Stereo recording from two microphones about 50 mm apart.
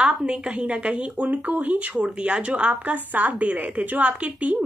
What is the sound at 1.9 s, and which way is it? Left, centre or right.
A woman's voice, right.